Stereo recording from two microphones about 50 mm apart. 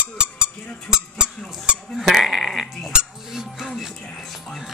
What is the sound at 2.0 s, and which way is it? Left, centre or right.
Goat, centre.